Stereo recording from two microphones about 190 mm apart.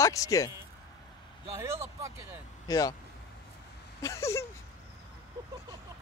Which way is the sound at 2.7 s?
20° left (ahead or behind).